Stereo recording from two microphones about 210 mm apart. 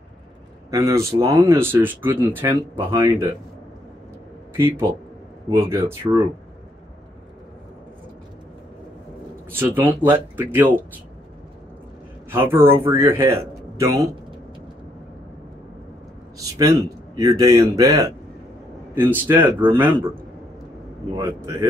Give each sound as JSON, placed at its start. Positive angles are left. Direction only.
{"t": 0.7, "sound": "speech", "side_deg": -15}
{"t": 4.6, "sound": "speech", "side_deg": -10}
{"t": 9.5, "sound": "speech", "side_deg": -10}
{"t": 12.3, "sound": "speech", "side_deg": -10}
{"t": 16.4, "sound": "speech", "side_deg": -15}